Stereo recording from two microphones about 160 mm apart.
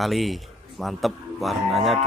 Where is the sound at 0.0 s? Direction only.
Centre (ahead or behind).